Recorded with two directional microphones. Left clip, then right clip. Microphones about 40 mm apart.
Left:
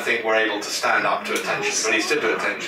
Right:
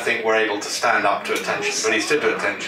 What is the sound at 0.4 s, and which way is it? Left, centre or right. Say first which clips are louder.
Speech: right 1 dB; centre.